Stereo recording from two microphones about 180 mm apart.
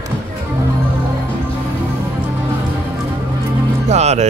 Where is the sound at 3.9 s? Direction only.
40° right (ahead or behind).